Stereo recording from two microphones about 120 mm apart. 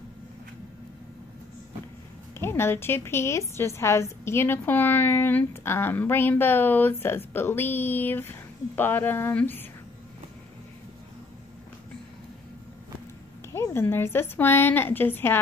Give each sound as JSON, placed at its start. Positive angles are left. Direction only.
{"t": 2.3, "sound": "a woman's voice", "side_deg": 20}
{"t": 13.5, "sound": "speech", "side_deg": 20}